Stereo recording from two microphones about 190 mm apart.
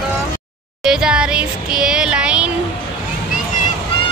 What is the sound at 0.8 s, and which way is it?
Music, 5° right (ahead or behind).